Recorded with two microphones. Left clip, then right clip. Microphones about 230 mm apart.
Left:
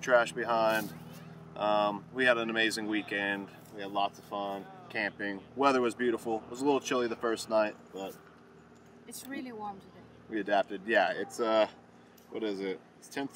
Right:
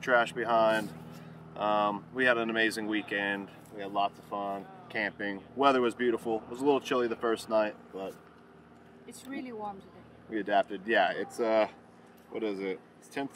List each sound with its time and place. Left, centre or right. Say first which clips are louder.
0.0 s speech: even; centre
9.1 s speech: right 1 dB; left
10.3 s speech: right 1 dB; centre